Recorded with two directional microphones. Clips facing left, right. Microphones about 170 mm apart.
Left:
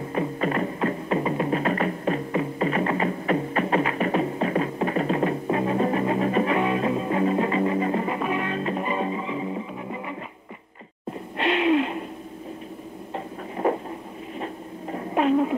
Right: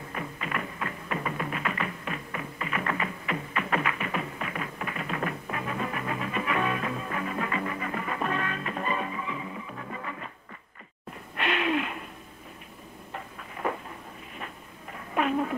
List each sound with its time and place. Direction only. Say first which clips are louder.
0.1 s music: left 10 dB; 30° left (ahead or behind)
8.2 s music: left 4 dB; 15° left (ahead or behind)
8.5 s music: left 5 dB; 25° left (ahead or behind)
11.3 s wheeze: left 7 dB; 25° left (ahead or behind)
13.1 s a sound: left 8 dB; 30° left (ahead or behind)